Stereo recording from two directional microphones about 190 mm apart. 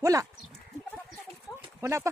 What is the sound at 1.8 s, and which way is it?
Speech, 15° right (ahead or behind).